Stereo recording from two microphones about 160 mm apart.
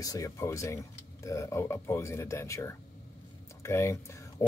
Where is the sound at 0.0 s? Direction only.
20° left (ahead or behind).